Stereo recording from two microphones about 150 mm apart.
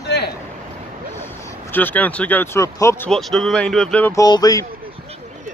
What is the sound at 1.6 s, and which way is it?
Speech, 10° left (ahead or behind).